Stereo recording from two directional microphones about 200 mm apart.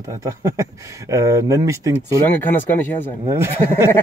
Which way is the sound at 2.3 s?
10° left (ahead or behind).